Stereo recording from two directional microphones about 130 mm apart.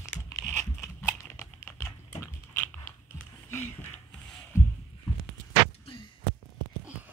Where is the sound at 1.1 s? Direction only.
20° left (ahead or behind).